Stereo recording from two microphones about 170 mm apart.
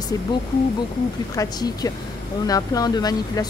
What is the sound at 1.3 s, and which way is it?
Speech, 20° left (ahead or behind).